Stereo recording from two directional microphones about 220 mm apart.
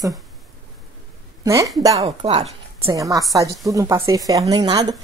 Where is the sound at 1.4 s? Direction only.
15° right (ahead or behind).